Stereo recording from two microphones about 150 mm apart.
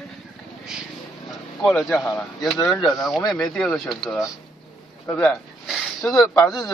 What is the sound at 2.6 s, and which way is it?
Speech, 25° left (ahead or behind).